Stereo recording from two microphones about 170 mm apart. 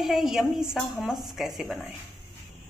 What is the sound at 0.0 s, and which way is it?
Speech, centre (ahead or behind).